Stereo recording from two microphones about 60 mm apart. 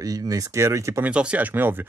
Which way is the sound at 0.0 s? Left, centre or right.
Right.